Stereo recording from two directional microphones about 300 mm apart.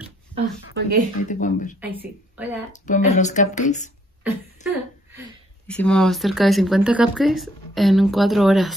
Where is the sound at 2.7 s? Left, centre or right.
Left.